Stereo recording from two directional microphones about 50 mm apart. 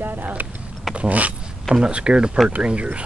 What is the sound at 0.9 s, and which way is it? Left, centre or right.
Speech, right.